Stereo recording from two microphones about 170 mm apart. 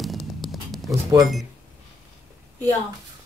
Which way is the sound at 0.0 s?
Centre (ahead or behind).